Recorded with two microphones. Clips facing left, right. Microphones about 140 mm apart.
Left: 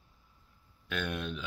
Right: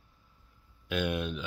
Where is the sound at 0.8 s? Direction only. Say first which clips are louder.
Right 5 dB; 10° right (ahead or behind).